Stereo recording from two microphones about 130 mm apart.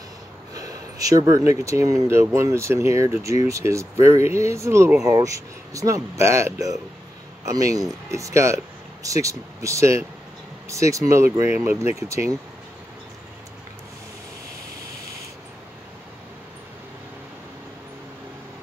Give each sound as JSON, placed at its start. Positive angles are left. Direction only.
{"t": 0.6, "sound": "speech", "side_deg": -25}